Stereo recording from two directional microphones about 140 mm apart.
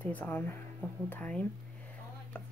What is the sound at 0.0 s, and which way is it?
A woman's voice, 15° left (ahead or behind).